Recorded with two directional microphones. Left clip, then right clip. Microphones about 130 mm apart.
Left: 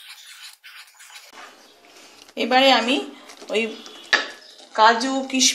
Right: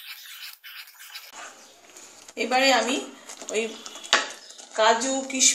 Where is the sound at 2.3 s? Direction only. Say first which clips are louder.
Left 5 dB; 80° left.